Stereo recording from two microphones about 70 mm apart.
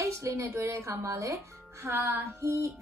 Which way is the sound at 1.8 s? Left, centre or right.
Right.